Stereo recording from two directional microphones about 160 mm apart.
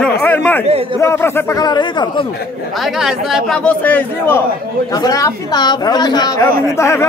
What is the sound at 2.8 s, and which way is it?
A man's voice, centre (ahead or behind).